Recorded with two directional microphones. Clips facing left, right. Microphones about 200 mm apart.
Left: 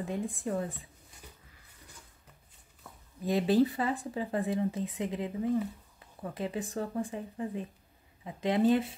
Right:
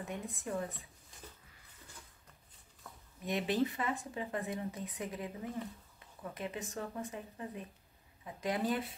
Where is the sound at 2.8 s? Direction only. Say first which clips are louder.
Left 1 dB; 10° left (ahead or behind).